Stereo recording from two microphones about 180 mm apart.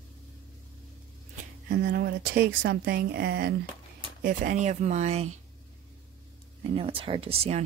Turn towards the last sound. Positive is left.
turn(degrees=-35)  # may be behind; listen again after turning